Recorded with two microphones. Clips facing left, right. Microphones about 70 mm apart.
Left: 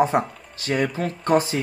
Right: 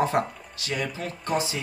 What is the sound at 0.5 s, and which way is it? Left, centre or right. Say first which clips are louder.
Speech: left 7 dB; left.